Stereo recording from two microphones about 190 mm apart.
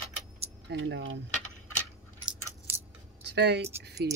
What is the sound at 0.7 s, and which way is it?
Speech, 70° right (ahead or behind).